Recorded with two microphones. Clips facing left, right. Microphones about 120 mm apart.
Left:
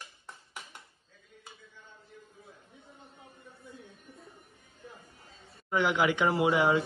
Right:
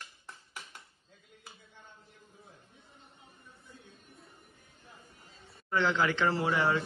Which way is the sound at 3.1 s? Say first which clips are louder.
Left 5 dB; 60° left (ahead or behind).